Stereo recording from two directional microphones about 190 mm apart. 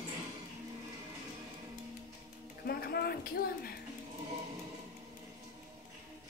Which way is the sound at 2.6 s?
55° left (ahead or behind).